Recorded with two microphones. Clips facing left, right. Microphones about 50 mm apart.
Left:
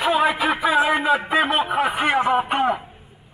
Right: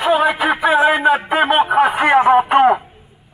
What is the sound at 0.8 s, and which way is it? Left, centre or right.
A man's voice, right.